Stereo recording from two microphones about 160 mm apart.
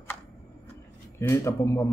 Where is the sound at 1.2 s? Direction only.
15° left (ahead or behind).